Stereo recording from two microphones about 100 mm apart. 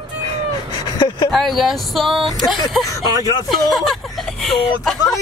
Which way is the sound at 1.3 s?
Centre (ahead or behind).